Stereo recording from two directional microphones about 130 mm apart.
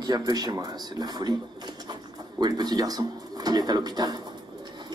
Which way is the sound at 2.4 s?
30° right (ahead or behind).